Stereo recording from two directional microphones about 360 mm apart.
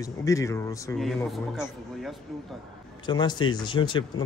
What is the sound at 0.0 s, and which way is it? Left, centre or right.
A man's voice, centre.